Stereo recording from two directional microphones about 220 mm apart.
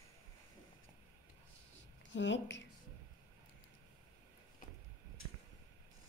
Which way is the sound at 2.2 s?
55° left (ahead or behind).